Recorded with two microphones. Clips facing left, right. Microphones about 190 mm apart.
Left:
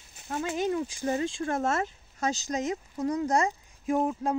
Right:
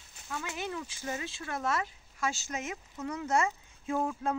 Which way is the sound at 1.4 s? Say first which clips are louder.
Left 6 dB; 45° left (ahead or behind).